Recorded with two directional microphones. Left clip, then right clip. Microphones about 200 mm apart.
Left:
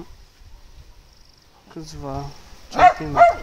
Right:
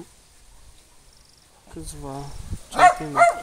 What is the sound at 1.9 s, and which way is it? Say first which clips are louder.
Speech: left 5 dB; 20° left (ahead or behind).